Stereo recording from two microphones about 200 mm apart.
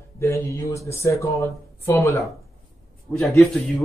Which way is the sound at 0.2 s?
15° left (ahead or behind).